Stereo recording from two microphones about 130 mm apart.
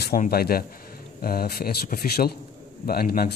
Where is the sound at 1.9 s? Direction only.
75° left (ahead or behind).